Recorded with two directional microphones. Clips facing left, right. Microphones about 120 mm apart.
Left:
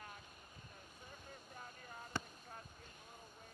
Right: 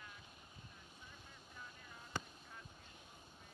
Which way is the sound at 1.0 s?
45° left (ahead or behind).